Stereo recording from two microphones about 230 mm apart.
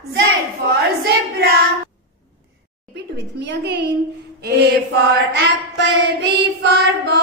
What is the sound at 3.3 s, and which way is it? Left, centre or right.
Female singing, right.